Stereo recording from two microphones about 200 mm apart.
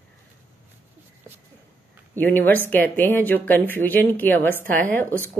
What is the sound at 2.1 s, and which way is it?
Speech, 10° left (ahead or behind).